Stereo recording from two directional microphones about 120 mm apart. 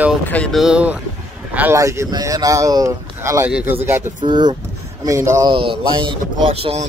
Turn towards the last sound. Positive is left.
turn(degrees=-55)  # may be behind; listen again after turning